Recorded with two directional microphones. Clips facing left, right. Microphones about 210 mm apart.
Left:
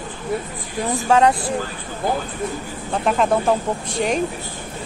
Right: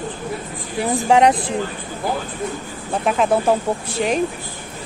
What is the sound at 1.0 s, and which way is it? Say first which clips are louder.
Speech: right 1 dB; 15° right (ahead or behind).